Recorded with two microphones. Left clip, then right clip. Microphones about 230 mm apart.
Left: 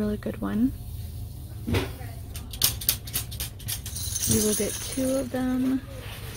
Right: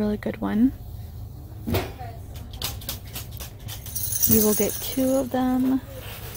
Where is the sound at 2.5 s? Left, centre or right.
Left.